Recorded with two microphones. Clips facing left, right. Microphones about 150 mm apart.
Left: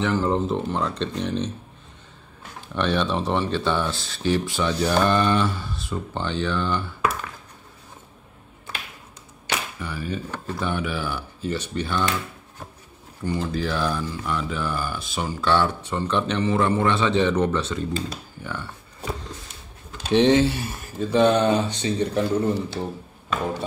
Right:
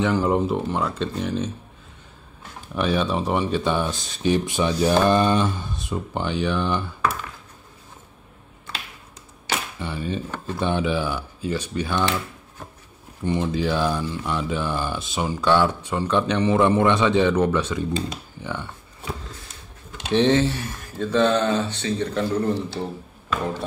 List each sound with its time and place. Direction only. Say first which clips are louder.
0.0 s speech: right 2 dB; 15° right (ahead or behind)
2.7 s speech: right 1 dB; 5° right (ahead or behind)
9.8 s speech: right 2 dB; 25° right (ahead or behind)
11.9 s speech: right 2 dB; 20° right (ahead or behind)
13.2 s speech: right 3 dB; 20° right (ahead or behind)
20.2 s speech: left 1 dB; 15° left (ahead or behind)